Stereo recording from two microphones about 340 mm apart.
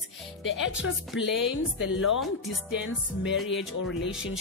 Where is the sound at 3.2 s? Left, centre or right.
Left.